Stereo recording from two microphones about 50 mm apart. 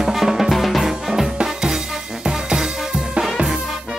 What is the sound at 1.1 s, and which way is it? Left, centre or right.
Music, centre.